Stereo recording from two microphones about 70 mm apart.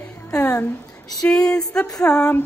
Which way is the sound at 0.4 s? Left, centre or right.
Left.